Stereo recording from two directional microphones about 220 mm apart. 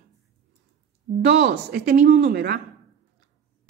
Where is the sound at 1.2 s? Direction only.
50° right (ahead or behind).